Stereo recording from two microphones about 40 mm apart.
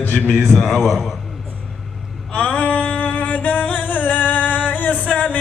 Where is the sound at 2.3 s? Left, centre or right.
Left.